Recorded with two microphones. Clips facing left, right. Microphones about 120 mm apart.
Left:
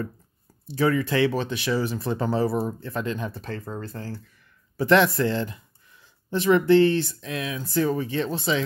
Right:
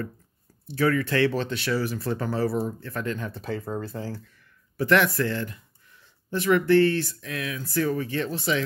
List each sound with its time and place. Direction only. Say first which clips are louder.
0.7 s speech: left 1 dB; 20° left (ahead or behind)
3.3 s speech: right 3 dB; 5° right (ahead or behind)
4.7 s speech: left 2 dB; 25° left (ahead or behind)